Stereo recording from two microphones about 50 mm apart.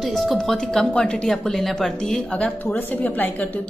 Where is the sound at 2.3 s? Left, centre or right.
Left.